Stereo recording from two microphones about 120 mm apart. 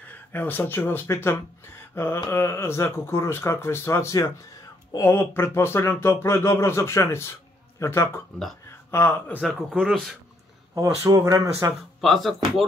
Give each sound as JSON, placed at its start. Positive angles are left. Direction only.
{"t": 0.1, "sound": "speech", "side_deg": 15}
{"t": 9.4, "sound": "speech", "side_deg": 0}
{"t": 10.7, "sound": "speech", "side_deg": -30}
{"t": 12.0, "sound": "speech", "side_deg": 0}